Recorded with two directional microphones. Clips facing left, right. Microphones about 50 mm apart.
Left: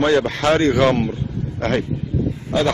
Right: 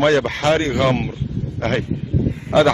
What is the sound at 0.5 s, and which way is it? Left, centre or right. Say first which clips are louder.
Speech: left 4 dB; centre.